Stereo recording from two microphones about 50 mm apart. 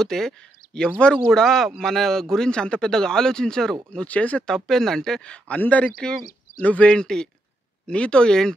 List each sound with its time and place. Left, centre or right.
0.0 s speech: centre
4.0 s speech: left
4.5 s speech: centre